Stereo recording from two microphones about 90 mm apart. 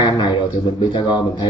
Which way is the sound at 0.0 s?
50° left (ahead or behind).